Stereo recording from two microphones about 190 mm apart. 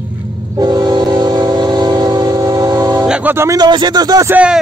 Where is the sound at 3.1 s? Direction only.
10° right (ahead or behind).